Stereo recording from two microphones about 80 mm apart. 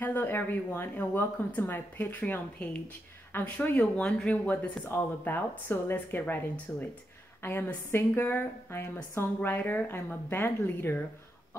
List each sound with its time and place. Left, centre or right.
0.0 s speech: left
4.8 s speech: left